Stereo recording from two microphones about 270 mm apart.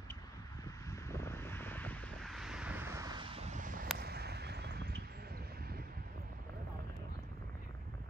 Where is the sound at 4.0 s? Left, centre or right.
Right.